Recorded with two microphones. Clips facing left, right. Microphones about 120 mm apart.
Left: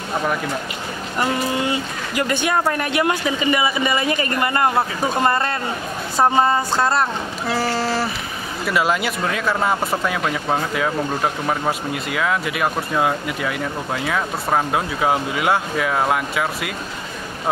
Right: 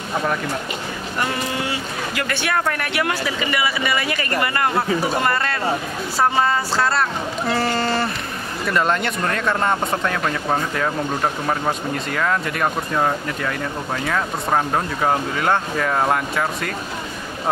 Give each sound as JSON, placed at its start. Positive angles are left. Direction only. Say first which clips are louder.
{"t": 1.2, "sound": "a man's voice", "louder": "left 4 dB", "side_deg": 20}
{"t": 7.4, "sound": "speech", "louder": "even", "side_deg": 0}